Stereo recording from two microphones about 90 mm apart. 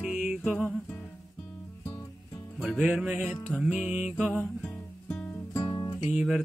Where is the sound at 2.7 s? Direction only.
10° right (ahead or behind).